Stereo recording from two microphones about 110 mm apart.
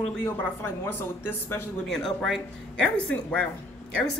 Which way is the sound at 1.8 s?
Centre (ahead or behind).